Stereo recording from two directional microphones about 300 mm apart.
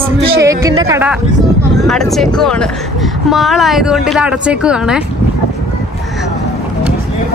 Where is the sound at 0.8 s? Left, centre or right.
Centre.